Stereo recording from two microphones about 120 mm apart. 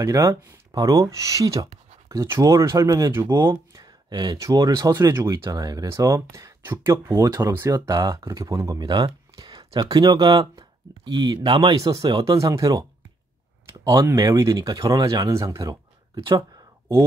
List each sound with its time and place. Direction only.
0.0 s speech: 25° right (ahead or behind)
2.0 s a sound: 25° right (ahead or behind)
2.4 s speech: 30° right (ahead or behind)
3.8 s a sound: 40° right (ahead or behind)
4.4 s speech: 30° right (ahead or behind)
13.8 s speech: 30° right (ahead or behind)
16.2 s speech: 40° right (ahead or behind)